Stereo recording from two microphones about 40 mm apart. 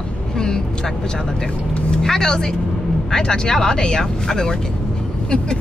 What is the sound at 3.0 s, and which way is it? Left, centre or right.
Speech, centre.